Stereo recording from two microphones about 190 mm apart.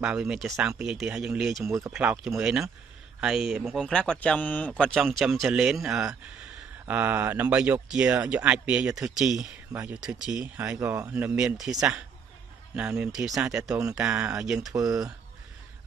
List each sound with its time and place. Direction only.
0.0 s speech: 5° right (ahead or behind)
1.6 s speech: 15° right (ahead or behind)
1.9 s speech: 5° right (ahead or behind)
9.7 s speech: 15° right (ahead or behind)
9.9 s speech: 5° right (ahead or behind)
14.7 s speech: 20° right (ahead or behind)